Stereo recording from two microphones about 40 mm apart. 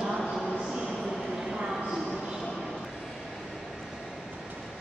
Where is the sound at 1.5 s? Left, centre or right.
Centre.